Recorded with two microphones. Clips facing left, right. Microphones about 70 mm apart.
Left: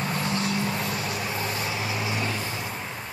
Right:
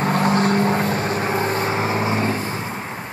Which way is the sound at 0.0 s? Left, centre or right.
Right.